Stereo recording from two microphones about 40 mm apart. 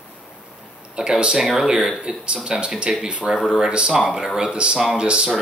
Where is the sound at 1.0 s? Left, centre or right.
Centre.